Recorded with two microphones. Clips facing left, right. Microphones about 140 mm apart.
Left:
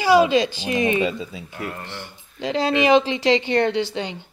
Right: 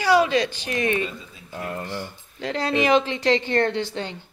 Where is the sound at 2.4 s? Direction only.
20° left (ahead or behind).